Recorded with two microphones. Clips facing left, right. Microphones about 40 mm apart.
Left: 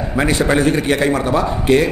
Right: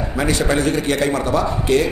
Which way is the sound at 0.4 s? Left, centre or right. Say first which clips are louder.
Left 4 dB; centre.